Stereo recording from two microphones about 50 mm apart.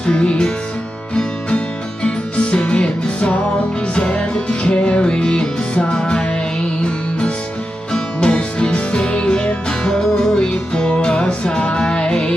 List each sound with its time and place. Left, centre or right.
0.0 s music: centre
2.0 s music: left